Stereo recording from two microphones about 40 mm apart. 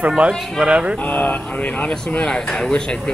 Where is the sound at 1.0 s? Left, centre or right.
Left.